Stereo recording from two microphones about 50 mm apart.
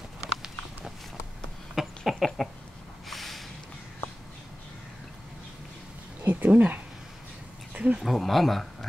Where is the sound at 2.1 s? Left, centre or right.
Centre.